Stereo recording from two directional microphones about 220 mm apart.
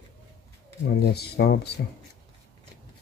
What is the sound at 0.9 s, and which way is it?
Speech, 45° left (ahead or behind).